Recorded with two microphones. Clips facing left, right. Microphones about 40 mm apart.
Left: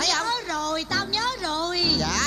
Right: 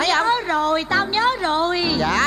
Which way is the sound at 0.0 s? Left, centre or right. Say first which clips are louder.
Right 7 dB; right.